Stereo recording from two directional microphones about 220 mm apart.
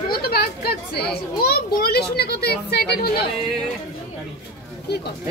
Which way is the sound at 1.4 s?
45° left (ahead or behind).